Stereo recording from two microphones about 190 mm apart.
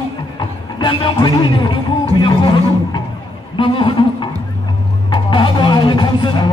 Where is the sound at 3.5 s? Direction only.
25° left (ahead or behind).